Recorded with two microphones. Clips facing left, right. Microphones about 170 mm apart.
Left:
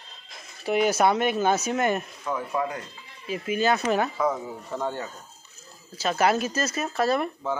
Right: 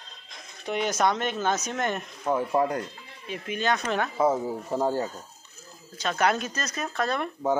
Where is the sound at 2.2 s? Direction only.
30° right (ahead or behind).